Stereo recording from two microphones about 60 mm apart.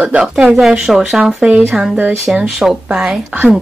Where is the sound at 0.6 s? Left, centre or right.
Centre.